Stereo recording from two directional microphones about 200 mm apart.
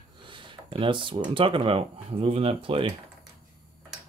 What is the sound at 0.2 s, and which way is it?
Speech, 25° right (ahead or behind).